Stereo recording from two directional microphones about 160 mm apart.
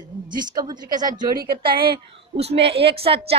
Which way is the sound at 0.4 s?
25° right (ahead or behind).